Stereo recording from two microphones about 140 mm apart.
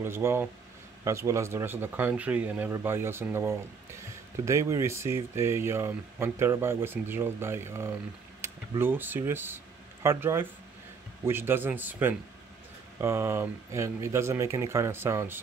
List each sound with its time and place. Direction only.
0.0 s speech: 15° right (ahead or behind)